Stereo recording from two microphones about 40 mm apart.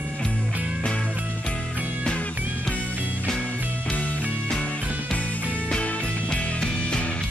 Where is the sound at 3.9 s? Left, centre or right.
Left.